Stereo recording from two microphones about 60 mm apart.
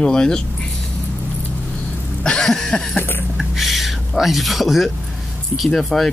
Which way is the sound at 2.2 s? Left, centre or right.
Centre.